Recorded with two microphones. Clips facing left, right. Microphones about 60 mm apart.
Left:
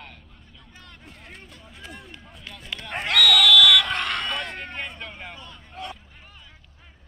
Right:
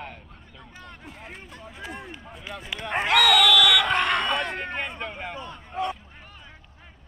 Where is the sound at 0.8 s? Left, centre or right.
Centre.